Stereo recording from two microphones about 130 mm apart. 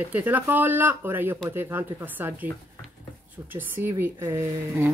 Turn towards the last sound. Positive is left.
turn(degrees=-20)  # may be behind; listen again after turning